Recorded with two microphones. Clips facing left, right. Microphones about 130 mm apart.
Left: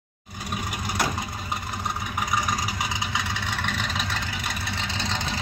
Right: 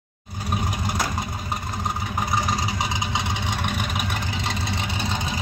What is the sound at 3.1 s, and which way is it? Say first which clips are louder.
Vehicle: right 3 dB; 20° right (ahead or behind).